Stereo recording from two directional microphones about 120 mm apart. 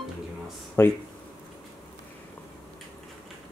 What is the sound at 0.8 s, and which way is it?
Speech, 20° left (ahead or behind).